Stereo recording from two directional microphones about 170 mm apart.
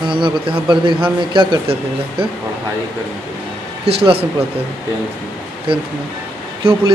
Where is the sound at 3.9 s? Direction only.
35° right (ahead or behind).